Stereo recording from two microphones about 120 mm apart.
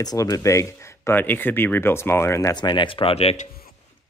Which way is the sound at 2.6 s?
40° left (ahead or behind).